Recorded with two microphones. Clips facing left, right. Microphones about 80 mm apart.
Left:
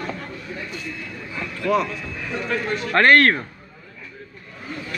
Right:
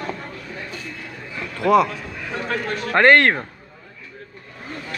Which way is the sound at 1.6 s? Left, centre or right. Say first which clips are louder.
Right 5 dB; right.